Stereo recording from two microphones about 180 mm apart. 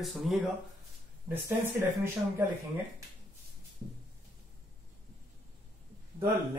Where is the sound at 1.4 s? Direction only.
15° right (ahead or behind).